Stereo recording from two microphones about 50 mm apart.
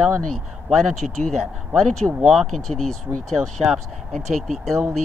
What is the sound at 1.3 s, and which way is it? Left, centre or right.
Speech, centre.